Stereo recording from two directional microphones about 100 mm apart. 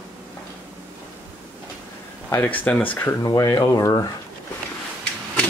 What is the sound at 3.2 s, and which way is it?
Speech, 35° left (ahead or behind).